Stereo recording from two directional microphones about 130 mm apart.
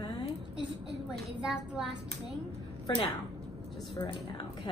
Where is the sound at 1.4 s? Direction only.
5° right (ahead or behind).